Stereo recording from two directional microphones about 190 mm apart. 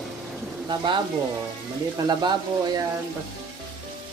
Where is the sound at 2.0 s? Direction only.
20° right (ahead or behind).